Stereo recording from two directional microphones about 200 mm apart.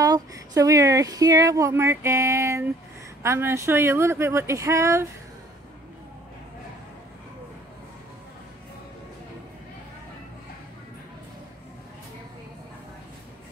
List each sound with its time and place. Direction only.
0.0 s speech: 15° right (ahead or behind)